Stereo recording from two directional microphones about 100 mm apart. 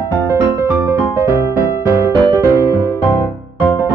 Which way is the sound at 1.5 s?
15° right (ahead or behind).